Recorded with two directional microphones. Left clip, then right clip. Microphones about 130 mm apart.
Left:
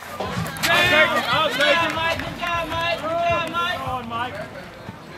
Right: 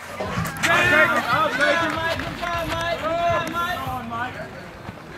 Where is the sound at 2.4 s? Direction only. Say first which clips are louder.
Left 2 dB; 20° left (ahead or behind).